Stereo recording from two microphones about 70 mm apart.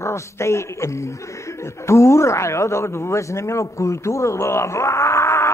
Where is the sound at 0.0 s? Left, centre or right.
Left.